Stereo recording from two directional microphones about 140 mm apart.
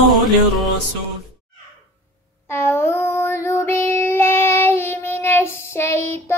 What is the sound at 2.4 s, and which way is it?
Child singing, 15° left (ahead or behind).